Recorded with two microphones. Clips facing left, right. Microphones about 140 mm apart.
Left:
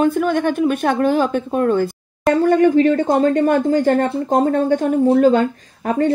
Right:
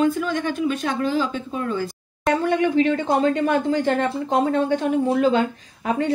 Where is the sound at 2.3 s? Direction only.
45° left (ahead or behind).